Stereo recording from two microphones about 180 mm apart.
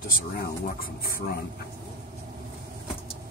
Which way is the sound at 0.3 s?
55° left (ahead or behind).